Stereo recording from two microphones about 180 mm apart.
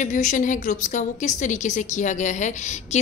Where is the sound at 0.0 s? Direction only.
45° left (ahead or behind).